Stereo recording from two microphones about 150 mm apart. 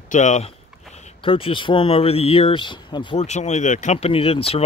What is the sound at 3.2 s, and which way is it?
Speech, 50° left (ahead or behind).